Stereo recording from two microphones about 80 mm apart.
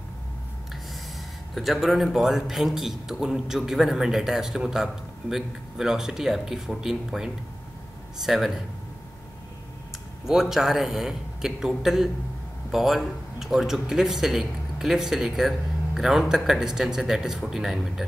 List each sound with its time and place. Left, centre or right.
1.5 s speech: centre
10.2 s speech: centre